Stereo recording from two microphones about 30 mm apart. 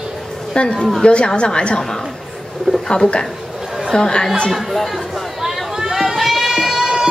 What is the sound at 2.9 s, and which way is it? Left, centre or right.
A woman's voice, left.